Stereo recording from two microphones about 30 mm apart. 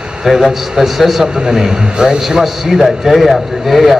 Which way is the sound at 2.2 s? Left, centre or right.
Centre.